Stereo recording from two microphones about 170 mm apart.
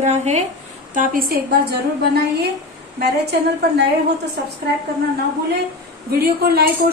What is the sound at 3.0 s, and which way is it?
Speech, 70° right (ahead or behind).